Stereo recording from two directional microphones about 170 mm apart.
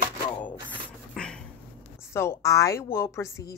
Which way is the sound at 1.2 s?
5° left (ahead or behind).